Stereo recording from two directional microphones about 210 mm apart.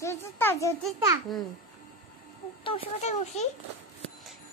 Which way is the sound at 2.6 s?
30° left (ahead or behind).